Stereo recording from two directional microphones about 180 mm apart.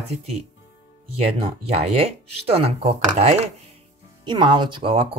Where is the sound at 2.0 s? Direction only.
35° right (ahead or behind).